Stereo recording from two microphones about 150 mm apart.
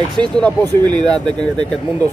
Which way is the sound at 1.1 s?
30° right (ahead or behind).